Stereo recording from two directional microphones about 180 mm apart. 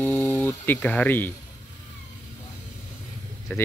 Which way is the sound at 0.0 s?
10° left (ahead or behind).